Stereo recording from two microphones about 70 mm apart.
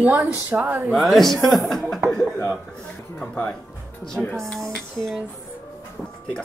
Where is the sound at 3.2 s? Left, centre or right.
Centre.